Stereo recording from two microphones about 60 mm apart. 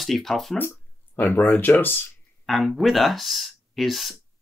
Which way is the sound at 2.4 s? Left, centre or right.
Centre.